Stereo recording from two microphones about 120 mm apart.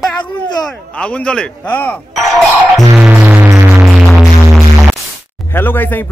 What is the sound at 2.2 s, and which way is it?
Speech, centre (ahead or behind).